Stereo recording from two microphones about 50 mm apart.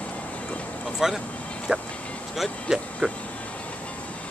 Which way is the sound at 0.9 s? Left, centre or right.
Centre.